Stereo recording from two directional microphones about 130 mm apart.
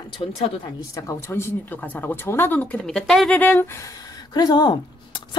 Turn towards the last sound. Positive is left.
turn(degrees=35)  # may be behind; listen again after turning